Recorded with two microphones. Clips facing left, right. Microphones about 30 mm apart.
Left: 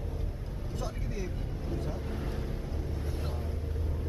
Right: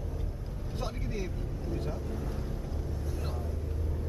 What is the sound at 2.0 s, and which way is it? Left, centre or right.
Speech, left.